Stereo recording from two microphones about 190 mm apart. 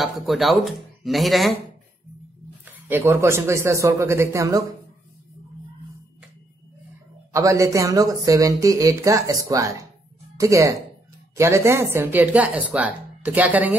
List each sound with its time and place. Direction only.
0.0 s speech: centre (ahead or behind)
2.6 s speech: 10° right (ahead or behind)
7.3 s speech: 15° right (ahead or behind)